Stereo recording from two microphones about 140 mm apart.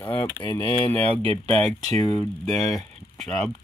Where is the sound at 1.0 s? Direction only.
45° right (ahead or behind).